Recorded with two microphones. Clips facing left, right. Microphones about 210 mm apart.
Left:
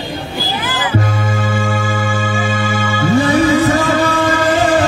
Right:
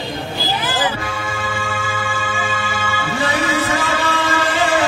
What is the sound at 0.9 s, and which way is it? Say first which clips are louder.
Music: left 8 dB; 45° left (ahead or behind).